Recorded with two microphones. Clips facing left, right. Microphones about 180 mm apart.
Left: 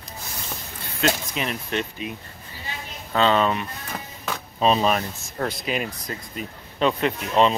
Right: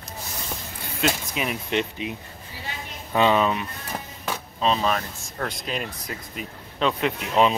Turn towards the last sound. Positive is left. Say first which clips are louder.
# left 1 dB
turn(degrees=-5)  # may be behind; listen again after turning